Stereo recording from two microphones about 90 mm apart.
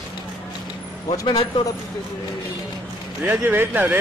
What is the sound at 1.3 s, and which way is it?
Speech, 60° left (ahead or behind).